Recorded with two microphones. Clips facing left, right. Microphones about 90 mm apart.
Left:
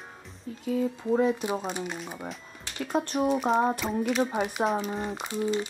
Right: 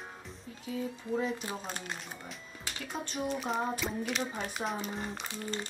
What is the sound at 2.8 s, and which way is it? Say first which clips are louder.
Speech: left 10 dB; 55° left (ahead or behind).